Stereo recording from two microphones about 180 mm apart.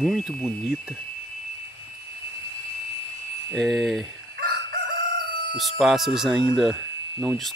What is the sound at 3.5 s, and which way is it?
Speech, centre (ahead or behind).